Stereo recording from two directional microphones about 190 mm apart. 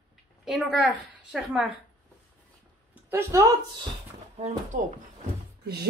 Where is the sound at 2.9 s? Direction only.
10° right (ahead or behind).